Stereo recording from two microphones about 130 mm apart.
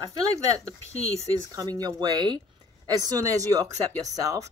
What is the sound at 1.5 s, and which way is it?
Speech, 30° right (ahead or behind).